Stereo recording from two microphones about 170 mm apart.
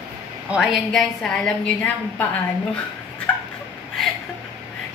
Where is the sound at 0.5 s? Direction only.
Centre (ahead or behind).